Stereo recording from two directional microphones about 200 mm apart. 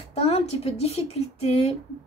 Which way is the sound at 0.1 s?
30° left (ahead or behind).